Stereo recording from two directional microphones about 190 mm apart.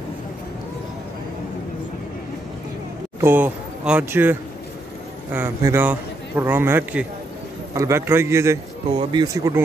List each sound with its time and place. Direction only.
3.2 s a man's voice: 10° right (ahead or behind)